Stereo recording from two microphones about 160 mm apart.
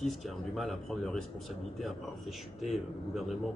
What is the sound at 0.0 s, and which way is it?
A man's voice, centre (ahead or behind).